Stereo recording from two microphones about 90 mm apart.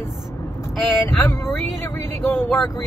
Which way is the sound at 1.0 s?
25° left (ahead or behind).